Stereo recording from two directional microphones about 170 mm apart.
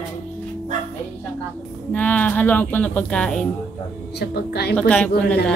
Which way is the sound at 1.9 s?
10° left (ahead or behind).